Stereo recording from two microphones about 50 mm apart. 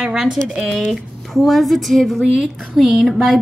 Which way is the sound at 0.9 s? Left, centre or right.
Centre.